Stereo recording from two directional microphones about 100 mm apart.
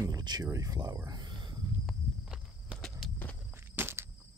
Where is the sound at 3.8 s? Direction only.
25° right (ahead or behind).